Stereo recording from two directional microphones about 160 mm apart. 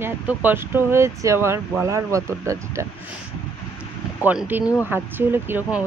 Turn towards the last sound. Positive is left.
turn(degrees=-15)  # may be behind; listen again after turning